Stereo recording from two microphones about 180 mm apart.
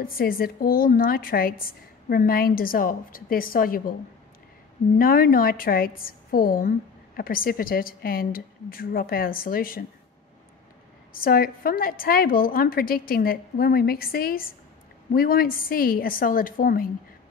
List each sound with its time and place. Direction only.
0.0 s a woman's voice: 55° left (ahead or behind)
4.9 s a woman's voice: 55° left (ahead or behind)
11.1 s a woman's voice: 55° left (ahead or behind)